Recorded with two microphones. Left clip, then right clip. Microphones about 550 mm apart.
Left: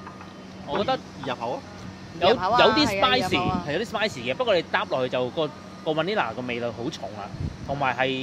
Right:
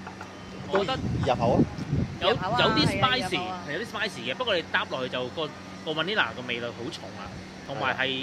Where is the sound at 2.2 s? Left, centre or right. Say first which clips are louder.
Left 6 dB; left.